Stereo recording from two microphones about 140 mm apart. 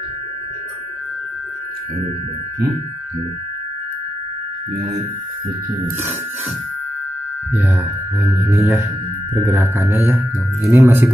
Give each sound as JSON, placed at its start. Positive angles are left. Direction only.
{"t": 8.5, "sound": "speech", "side_deg": -15}